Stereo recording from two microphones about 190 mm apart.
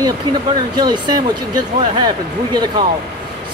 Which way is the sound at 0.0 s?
20° right (ahead or behind).